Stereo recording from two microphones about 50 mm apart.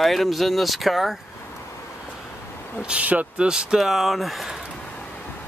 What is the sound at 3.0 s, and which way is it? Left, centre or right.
Speech, right.